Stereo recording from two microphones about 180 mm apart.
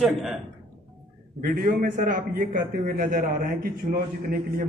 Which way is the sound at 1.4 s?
55° right (ahead or behind).